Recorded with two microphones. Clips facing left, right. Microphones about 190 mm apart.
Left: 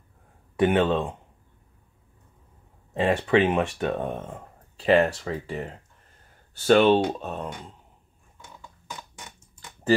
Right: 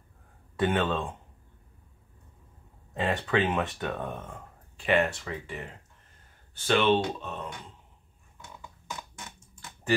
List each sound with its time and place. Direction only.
0.6 s speech: 25° left (ahead or behind)
2.9 s speech: 25° left (ahead or behind)
4.3 s speech: 35° left (ahead or behind)